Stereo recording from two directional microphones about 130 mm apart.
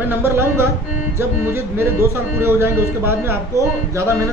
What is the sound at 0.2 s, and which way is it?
Speech, 20° right (ahead or behind).